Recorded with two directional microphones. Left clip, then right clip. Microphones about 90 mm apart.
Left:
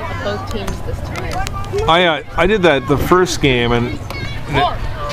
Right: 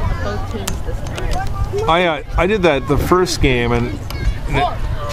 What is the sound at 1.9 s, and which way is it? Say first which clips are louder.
Speech: left 2 dB; 10° left (ahead or behind).